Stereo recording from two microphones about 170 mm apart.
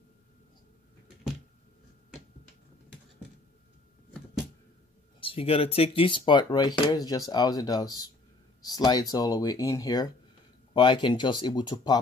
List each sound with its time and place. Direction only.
5.2 s speech: 35° left (ahead or behind)